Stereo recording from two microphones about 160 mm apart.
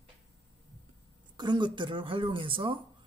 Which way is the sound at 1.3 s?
30° right (ahead or behind).